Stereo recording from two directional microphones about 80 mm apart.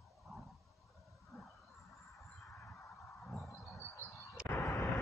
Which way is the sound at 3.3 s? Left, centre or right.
Centre.